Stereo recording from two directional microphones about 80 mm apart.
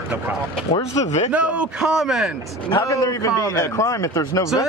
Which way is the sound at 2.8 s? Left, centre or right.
Left.